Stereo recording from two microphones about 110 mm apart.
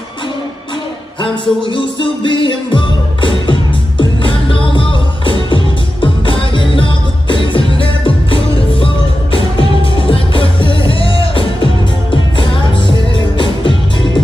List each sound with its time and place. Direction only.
1.2 s music: 50° left (ahead or behind)